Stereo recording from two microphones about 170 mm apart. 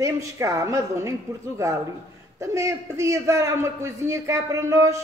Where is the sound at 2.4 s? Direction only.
15° right (ahead or behind).